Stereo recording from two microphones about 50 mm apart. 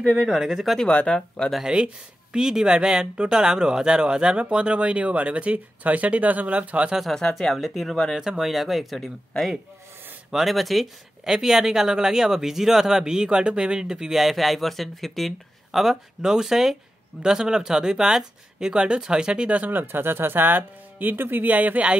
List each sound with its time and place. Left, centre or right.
0.0 s speech: centre
0.3 s speech: centre
0.8 s speech: left
1.1 s speech: centre
2.3 s speech: centre
7.2 s speech: centre
8.2 s speech: centre
10.3 s speech: centre; by 19.7 s right
19.7 s speech: right